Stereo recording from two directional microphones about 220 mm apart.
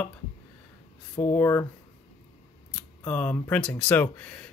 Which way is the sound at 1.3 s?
10° left (ahead or behind).